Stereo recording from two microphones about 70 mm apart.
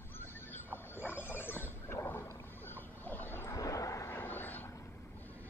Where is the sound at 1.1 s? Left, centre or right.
Left.